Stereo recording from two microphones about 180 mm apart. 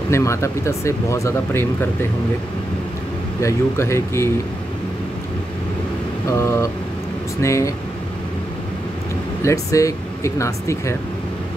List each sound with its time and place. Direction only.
0.1 s speech: 15° left (ahead or behind)
3.4 s speech: 15° left (ahead or behind)
6.3 s speech: 15° left (ahead or behind)
9.4 s speech: 15° left (ahead or behind)